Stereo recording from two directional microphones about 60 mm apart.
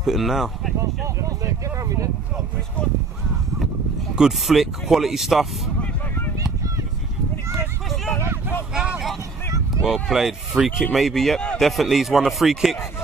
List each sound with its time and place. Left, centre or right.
0.0 s speech: centre
1.0 s speech: right
4.1 s speech: centre
9.8 s speech: centre